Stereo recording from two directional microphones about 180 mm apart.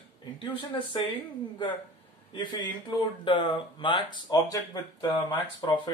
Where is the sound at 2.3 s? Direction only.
25° left (ahead or behind).